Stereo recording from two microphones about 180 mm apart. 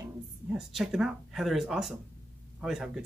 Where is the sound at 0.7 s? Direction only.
Centre (ahead or behind).